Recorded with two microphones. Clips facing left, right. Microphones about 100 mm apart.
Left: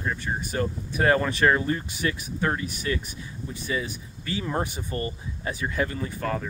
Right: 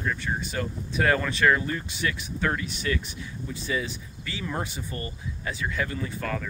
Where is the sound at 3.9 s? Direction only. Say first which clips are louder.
Left 4 dB; 45° left (ahead or behind).